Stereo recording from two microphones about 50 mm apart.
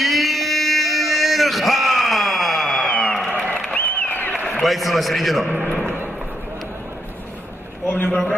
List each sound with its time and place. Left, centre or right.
0.0 s a sound: centre
3.7 s applause: left
4.6 s a man's voice: centre
5.5 s a man's voice: right
7.9 s a man's voice: left